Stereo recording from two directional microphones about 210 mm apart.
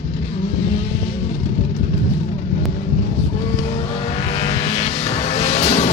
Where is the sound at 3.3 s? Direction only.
30° left (ahead or behind).